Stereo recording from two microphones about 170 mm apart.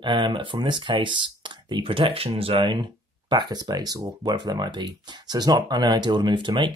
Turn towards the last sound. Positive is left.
turn(degrees=-30)  # may be behind; listen again after turning